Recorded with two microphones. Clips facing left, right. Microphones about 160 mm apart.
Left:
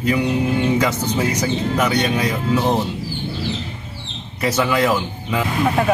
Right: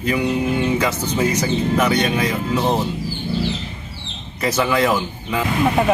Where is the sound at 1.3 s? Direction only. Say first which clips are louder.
Right 1 dB; 15° left (ahead or behind).